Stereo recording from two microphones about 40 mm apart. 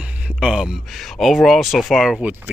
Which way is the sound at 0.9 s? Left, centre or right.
Centre.